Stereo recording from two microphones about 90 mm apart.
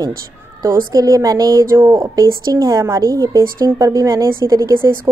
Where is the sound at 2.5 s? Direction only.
40° right (ahead or behind).